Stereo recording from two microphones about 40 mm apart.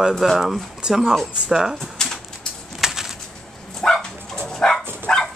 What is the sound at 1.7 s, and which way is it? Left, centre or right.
Typewriter, centre.